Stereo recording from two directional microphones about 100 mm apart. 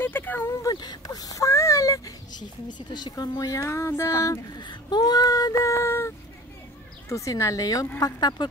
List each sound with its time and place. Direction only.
0.0 s a sound: 20° left (ahead or behind)
0.5 s speech: 30° left (ahead or behind)
2.9 s speech: 45° left (ahead or behind)
4.6 s speech: 50° left (ahead or behind)